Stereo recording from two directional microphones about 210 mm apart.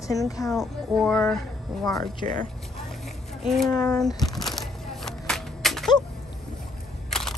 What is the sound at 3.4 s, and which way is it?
Speech, centre (ahead or behind).